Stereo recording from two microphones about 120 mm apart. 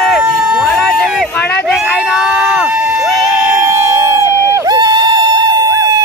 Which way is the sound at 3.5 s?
25° right (ahead or behind).